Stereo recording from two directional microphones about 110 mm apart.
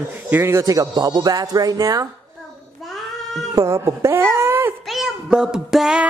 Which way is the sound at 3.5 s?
30° right (ahead or behind).